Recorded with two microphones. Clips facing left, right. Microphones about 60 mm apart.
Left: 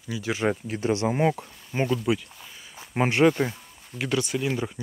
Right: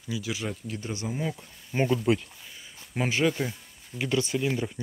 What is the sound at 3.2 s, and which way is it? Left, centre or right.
Speech, left.